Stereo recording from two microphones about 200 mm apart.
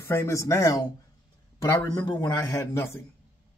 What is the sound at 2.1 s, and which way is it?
Speech, 15° left (ahead or behind).